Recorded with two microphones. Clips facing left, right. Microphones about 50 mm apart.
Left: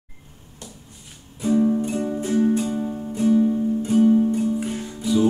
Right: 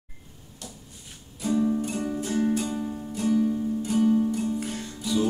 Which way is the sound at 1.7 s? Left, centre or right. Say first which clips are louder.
Left 5 dB; left.